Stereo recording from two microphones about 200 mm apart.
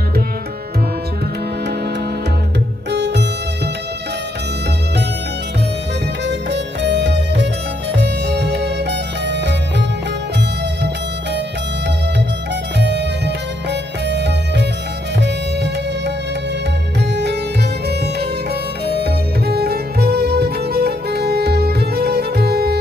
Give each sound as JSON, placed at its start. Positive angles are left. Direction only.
{"t": 2.9, "sound": "music", "side_deg": -60}
{"t": 6.2, "sound": "music", "side_deg": -60}
{"t": 12.7, "sound": "music", "side_deg": -60}
{"t": 17.1, "sound": "music", "side_deg": -55}